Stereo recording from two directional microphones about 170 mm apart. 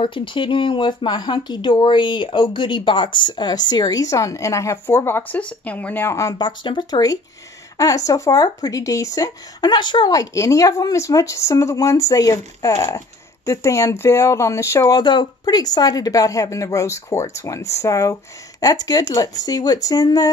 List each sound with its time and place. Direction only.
0.0 s speech: 30° left (ahead or behind)